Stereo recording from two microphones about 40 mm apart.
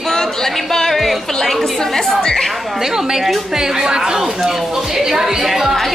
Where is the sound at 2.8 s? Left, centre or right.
Centre.